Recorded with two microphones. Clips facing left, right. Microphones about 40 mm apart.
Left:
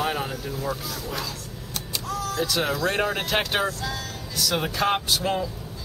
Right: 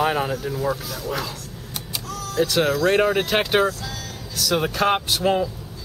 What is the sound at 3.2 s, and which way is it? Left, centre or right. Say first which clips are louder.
Speech: right 5 dB; centre.